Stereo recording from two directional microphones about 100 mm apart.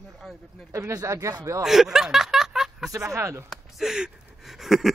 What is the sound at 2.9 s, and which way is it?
Speech, 30° right (ahead or behind).